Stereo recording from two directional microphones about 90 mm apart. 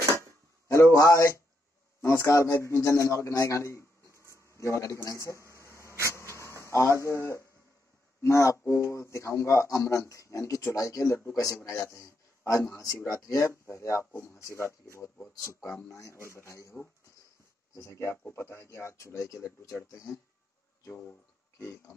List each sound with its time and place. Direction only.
0.9 s a man's voice: 35° left (ahead or behind)
5.5 s a sound: 35° left (ahead or behind)
8.2 s a man's voice: 35° left (ahead or behind)
17.7 s a man's voice: 30° left (ahead or behind)
20.9 s speech: 15° left (ahead or behind)
21.5 s a man's voice: 30° left (ahead or behind)